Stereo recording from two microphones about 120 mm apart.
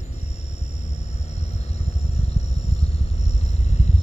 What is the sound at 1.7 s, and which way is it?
Vehicle, 60° left (ahead or behind).